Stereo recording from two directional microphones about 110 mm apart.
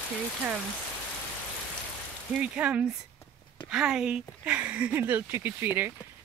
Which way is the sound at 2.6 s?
15° right (ahead or behind).